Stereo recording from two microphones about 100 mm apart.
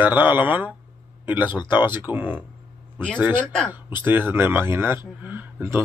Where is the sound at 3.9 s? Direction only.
20° right (ahead or behind).